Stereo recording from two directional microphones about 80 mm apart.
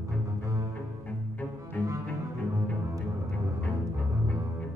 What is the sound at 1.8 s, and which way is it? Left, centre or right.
Cello, centre.